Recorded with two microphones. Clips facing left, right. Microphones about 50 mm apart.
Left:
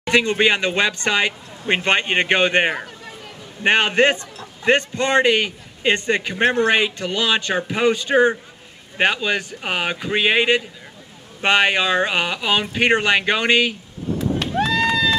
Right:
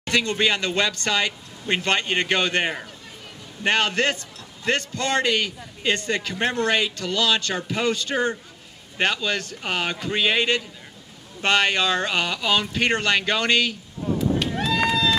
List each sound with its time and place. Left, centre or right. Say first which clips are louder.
0.0 s a man's voice: left 5 dB; left